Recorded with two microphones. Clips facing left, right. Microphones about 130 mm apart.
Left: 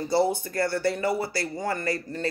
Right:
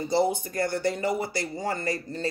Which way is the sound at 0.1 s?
20° right (ahead or behind).